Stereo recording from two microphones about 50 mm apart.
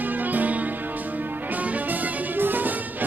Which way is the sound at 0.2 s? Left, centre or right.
Right.